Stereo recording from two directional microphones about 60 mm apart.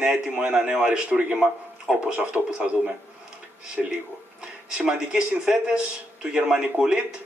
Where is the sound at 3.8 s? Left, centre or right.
Centre.